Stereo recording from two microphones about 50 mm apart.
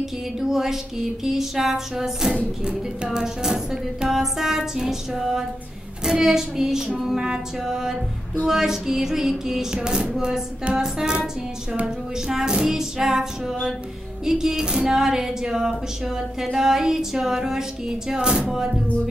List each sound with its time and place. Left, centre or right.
0.0 s speech: centre
2.3 s speech: centre
12.3 s speech: centre